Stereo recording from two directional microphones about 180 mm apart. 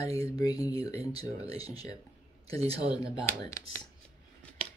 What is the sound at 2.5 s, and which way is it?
Speech, 20° left (ahead or behind).